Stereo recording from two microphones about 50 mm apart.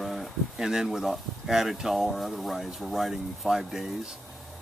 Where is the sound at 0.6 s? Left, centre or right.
Centre.